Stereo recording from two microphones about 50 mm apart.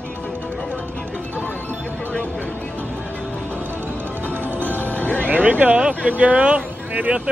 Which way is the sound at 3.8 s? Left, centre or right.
Right.